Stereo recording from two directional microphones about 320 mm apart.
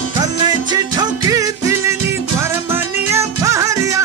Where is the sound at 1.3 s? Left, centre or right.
Centre.